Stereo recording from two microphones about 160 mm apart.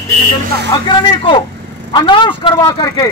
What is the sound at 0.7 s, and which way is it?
Speech, 25° left (ahead or behind).